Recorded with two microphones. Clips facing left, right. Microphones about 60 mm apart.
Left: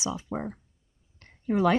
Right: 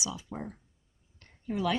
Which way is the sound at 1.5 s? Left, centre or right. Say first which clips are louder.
Left 7 dB; left.